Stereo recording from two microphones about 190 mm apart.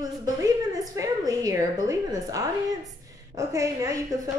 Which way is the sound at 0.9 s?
20° right (ahead or behind).